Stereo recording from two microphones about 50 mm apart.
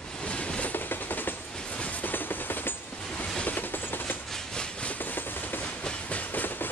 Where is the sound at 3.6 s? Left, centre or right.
Left.